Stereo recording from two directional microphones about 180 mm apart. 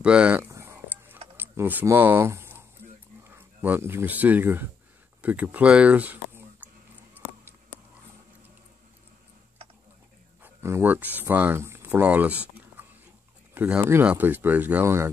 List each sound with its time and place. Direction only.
0.0 s a sound: 5° right (ahead or behind)
5.2 s speech: 10° right (ahead or behind)
10.4 s speech: 15° right (ahead or behind)